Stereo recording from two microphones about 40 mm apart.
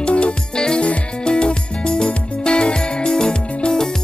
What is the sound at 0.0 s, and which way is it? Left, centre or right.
Music, left.